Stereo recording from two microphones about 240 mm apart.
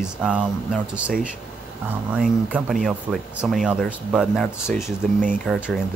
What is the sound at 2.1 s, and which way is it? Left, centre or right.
Speech, centre.